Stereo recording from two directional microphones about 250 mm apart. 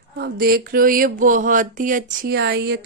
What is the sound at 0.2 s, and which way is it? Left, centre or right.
Speech, right.